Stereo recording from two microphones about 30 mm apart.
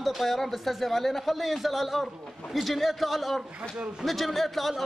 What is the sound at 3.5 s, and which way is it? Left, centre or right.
Speech, right.